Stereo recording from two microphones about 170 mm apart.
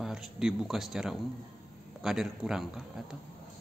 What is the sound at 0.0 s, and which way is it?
A man's voice, 5° right (ahead or behind).